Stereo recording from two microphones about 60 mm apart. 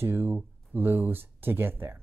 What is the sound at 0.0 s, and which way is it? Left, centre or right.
Speech, right.